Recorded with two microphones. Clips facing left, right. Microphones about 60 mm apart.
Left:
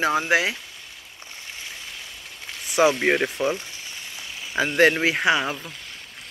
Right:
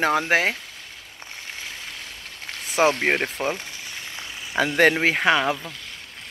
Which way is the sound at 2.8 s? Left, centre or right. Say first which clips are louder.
Left 1 dB; right.